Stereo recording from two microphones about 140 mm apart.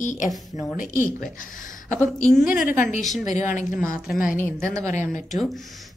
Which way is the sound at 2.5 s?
85° left.